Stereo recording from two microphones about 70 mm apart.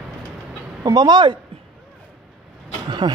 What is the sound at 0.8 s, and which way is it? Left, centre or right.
Speech, right.